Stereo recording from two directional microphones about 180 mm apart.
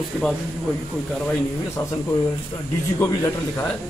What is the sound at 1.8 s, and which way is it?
Speech, 15° left (ahead or behind).